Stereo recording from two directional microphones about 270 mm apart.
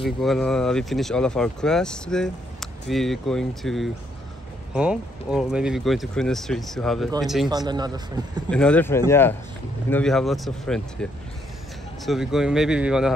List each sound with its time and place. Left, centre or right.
0.0 s speech: centre
7.4 s speech: centre
8.5 s speech: centre
12.1 s speech: centre